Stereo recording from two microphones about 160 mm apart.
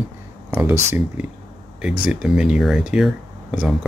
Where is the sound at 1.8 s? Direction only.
5° right (ahead or behind).